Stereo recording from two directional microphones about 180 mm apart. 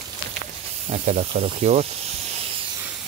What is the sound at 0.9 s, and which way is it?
Speech, 40° right (ahead or behind).